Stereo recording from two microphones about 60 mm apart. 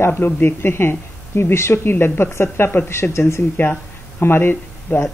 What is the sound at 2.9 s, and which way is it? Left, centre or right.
Speech, left.